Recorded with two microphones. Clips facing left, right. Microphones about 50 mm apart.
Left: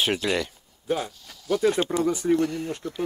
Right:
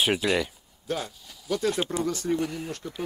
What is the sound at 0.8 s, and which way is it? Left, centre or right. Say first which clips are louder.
Speech: left 4 dB; centre.